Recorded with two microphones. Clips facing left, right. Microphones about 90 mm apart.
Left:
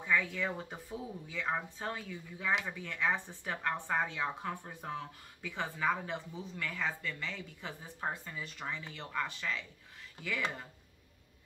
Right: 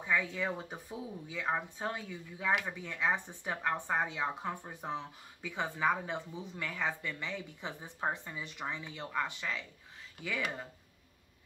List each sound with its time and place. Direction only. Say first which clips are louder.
0.0 s a woman's voice: even; 15° right (ahead or behind)